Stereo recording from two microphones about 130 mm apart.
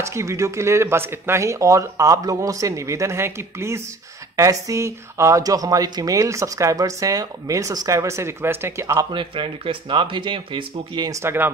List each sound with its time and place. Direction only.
0.0 s speech: 20° right (ahead or behind)
9.1 s speech: 40° right (ahead or behind)
11.1 s speech: 20° right (ahead or behind)